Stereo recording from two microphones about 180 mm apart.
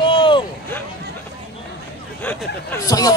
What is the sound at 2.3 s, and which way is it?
Speech, 15° left (ahead or behind).